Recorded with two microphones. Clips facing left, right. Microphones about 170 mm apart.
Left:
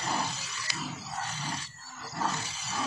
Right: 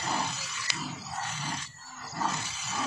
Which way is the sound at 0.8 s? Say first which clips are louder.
Even; centre (ahead or behind).